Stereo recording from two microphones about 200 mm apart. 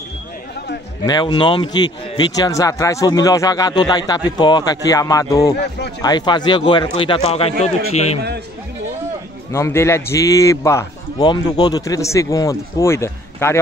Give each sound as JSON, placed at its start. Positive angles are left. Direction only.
{"t": 1.0, "sound": "a man's voice", "side_deg": 20}
{"t": 9.5, "sound": "a man's voice", "side_deg": 15}